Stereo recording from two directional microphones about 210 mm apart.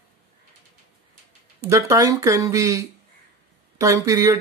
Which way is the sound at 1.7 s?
15° right (ahead or behind).